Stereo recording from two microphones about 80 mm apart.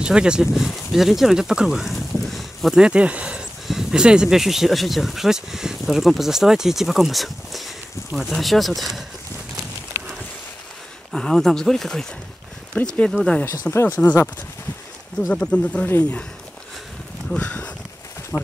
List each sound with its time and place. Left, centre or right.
0.0 s speech: centre
2.8 s speech: centre
11.1 s speech: centre
12.7 s speech: centre
13.5 s speech: left
15.3 s speech: centre
17.3 s speech: centre